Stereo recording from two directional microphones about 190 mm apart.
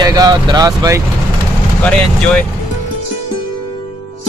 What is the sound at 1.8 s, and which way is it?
Speech, 5° left (ahead or behind).